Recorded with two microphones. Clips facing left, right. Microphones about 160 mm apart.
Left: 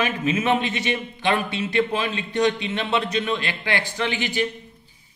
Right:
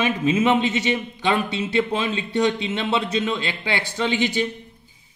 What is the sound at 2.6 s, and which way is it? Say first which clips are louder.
A man's voice: right 1 dB; 20° right (ahead or behind).